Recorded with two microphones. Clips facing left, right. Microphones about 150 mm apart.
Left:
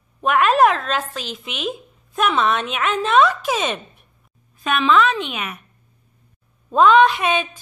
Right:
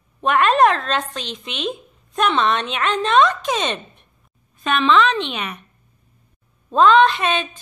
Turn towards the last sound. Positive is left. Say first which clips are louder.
# left 1 dB
turn(degrees=10)  # may be behind; listen again after turning